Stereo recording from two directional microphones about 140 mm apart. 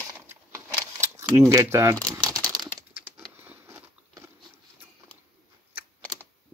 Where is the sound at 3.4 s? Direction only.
20° right (ahead or behind).